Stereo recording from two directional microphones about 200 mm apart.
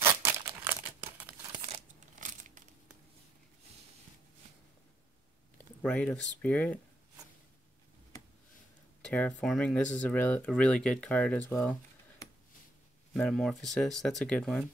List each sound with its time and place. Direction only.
0.0 s crumpling: 10° right (ahead or behind)
1.5 s crumpling: 20° right (ahead or behind)
1.8 s a sound: 40° right (ahead or behind)
5.6 s speech: 5° left (ahead or behind)
9.0 s speech: 5° left (ahead or behind)
13.1 s speech: 5° left (ahead or behind)